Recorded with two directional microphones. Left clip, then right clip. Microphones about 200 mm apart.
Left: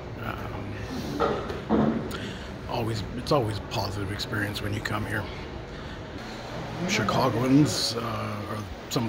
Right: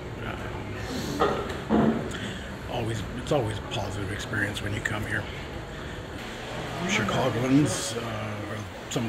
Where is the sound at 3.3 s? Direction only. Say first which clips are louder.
Left 2 dB; 20° left (ahead or behind).